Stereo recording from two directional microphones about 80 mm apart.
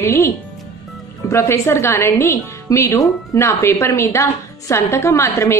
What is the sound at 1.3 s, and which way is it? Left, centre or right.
A woman's voice, left.